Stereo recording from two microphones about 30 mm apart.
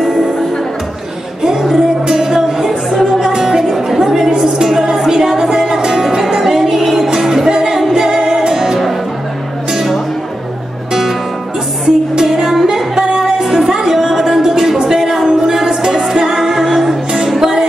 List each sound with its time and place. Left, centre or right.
1.4 s music: centre
4.6 s music: centre
6.0 s music: centre
12.2 s music: centre